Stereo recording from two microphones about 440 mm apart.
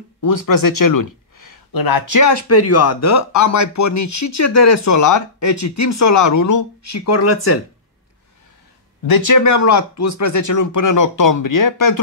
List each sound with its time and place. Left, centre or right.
0.2 s speech: left
9.0 s speech: left